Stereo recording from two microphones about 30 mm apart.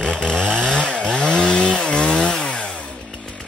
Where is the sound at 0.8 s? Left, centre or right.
Left.